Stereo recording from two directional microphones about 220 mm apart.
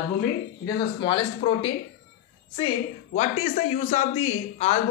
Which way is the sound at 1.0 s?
25° left (ahead or behind).